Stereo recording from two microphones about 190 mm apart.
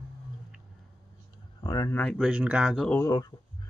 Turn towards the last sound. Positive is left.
turn(degrees=20)  # may be behind; listen again after turning